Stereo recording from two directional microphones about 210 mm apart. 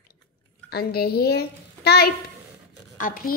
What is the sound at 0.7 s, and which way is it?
A woman's voice, 50° left (ahead or behind).